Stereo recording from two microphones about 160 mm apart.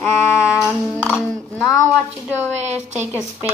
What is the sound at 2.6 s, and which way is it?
Speech, 45° right (ahead or behind).